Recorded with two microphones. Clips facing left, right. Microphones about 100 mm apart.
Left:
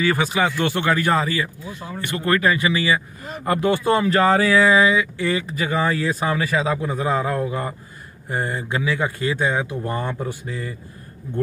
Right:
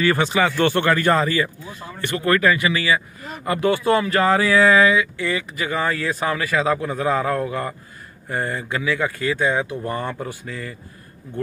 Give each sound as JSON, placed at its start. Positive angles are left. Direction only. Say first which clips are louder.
{"t": 0.0, "sound": "speech", "louder": "right 1 dB", "side_deg": 5}
{"t": 2.2, "sound": "speech", "louder": "right 1 dB", "side_deg": 25}